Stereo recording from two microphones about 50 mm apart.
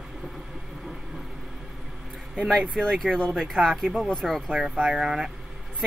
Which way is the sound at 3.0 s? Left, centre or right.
Centre.